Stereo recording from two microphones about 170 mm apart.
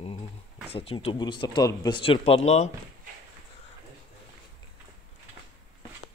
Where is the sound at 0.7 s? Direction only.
35° left (ahead or behind).